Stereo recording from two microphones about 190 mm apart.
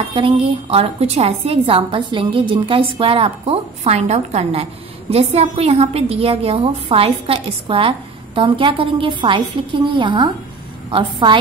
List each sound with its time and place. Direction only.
0.1 s a woman's voice: 30° right (ahead or behind)